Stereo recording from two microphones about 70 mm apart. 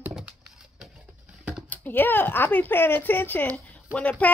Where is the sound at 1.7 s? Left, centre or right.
Left.